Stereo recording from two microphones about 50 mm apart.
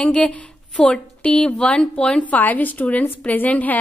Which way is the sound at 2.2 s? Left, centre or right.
Left.